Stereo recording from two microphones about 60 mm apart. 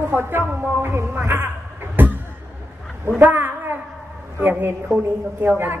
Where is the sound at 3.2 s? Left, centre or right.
Right.